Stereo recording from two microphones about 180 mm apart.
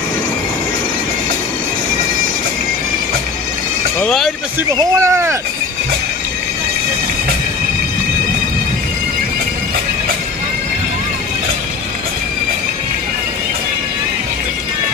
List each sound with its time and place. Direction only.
4.0 s speech: centre (ahead or behind)
4.7 s speech: 15° right (ahead or behind)